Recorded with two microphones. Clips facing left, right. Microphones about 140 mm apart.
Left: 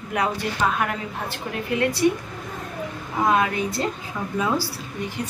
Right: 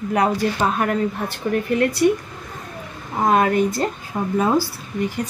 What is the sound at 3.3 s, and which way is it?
A woman's voice, 45° right (ahead or behind).